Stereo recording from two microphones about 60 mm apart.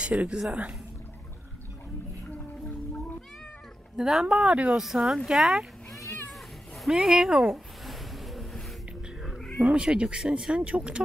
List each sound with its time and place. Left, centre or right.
0.0 s speech: centre
3.9 s speech: centre
4.7 s speech: centre
6.9 s speech: centre
7.5 s a sound: centre
9.7 s speech: centre